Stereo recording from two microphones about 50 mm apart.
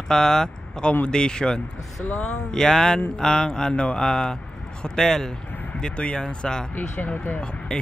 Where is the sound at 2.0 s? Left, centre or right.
Left.